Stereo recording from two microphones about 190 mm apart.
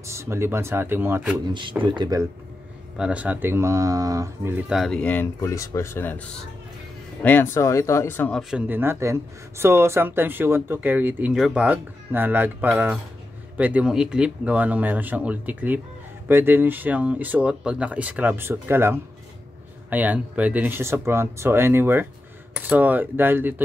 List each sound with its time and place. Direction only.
0.0 s speech: 15° right (ahead or behind)
1.5 s speech: 25° right (ahead or behind)
3.0 s speech: 5° right (ahead or behind); by 6.2 s 10° left (ahead or behind)
7.2 s speech: 15° left (ahead or behind)
8.4 s speech: 5° right (ahead or behind)